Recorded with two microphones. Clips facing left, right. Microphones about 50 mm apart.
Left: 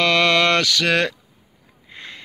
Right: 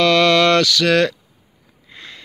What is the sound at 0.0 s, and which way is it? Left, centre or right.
Mantra, left.